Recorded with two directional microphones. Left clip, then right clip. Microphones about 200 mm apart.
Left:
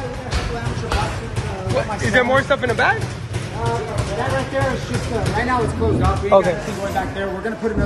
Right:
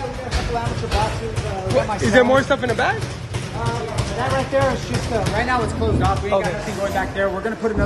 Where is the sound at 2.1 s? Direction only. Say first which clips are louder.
Right 1 dB; 25° right (ahead or behind).